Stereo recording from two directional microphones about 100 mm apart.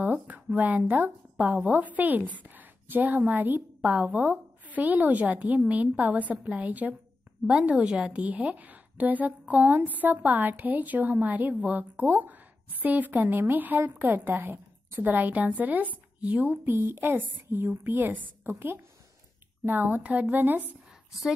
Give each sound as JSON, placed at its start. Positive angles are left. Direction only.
{"t": 0.0, "sound": "a woman's voice", "side_deg": -15}